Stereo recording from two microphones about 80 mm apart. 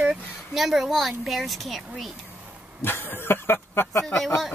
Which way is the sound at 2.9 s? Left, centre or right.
Left.